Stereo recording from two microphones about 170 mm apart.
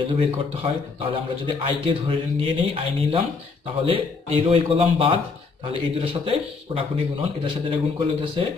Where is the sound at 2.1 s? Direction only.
30° right (ahead or behind).